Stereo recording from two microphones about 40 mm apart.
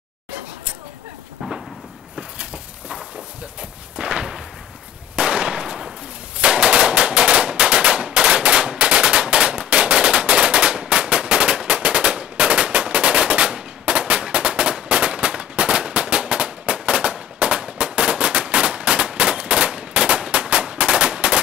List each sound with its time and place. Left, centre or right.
3.9 s a sound: right
5.1 s firecracker: right
6.4 s machine gun: right